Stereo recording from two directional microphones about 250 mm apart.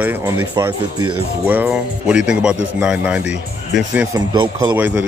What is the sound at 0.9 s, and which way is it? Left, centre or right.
Speech, right.